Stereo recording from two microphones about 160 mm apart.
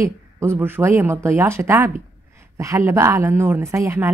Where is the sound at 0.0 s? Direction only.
15° right (ahead or behind).